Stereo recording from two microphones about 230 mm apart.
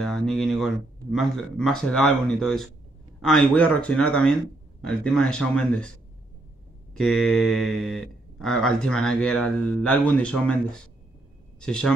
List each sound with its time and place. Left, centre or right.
0.0 s speech: centre
6.9 s speech: centre